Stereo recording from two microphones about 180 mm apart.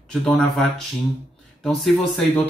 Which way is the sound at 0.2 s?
5° left (ahead or behind).